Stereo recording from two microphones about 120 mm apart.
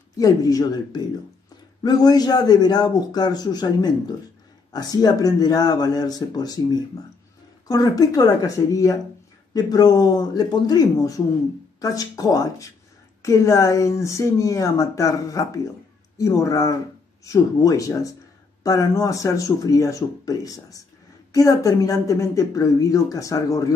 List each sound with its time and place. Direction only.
0.2 s a man's voice: 30° left (ahead or behind)